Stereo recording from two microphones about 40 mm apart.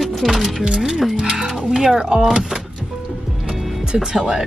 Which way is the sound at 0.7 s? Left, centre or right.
Centre.